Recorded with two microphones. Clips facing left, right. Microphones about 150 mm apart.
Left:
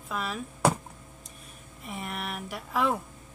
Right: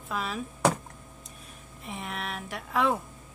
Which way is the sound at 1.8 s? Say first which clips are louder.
Even; centre (ahead or behind).